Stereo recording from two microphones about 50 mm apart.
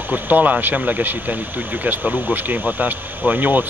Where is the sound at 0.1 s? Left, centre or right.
Right.